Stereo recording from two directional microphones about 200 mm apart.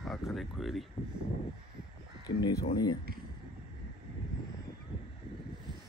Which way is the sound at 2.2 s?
20° left (ahead or behind).